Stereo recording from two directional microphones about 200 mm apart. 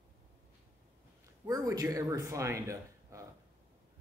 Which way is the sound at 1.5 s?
20° right (ahead or behind).